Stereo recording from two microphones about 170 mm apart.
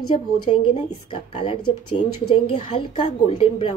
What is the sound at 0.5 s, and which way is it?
A woman's voice, 35° left (ahead or behind).